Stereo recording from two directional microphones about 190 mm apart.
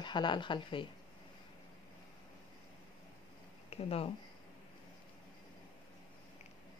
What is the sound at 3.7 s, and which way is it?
Speech, 30° left (ahead or behind).